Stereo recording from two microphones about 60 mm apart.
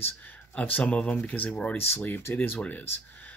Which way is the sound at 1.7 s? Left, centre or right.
Left.